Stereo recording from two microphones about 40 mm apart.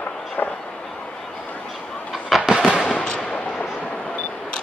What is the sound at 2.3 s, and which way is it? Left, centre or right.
Train, centre.